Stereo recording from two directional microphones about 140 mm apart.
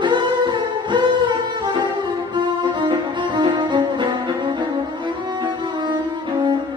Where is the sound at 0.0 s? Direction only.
35° right (ahead or behind).